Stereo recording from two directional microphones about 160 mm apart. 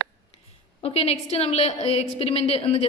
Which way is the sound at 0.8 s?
40° left (ahead or behind).